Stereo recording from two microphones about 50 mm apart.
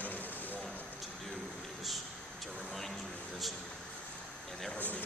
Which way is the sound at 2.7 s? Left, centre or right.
Centre.